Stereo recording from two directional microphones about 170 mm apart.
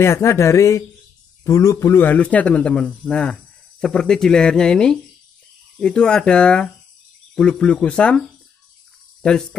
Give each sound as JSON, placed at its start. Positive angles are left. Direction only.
{"t": 0.0, "sound": "a man's voice", "side_deg": 15}
{"t": 9.2, "sound": "speech", "side_deg": 5}